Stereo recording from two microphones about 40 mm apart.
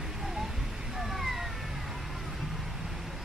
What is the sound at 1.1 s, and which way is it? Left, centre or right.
Vehicle, centre.